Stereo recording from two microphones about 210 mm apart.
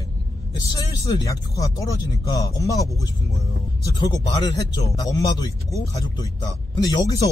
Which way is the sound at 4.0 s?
20° left (ahead or behind).